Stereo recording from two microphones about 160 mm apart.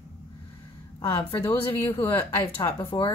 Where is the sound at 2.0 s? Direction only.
15° left (ahead or behind).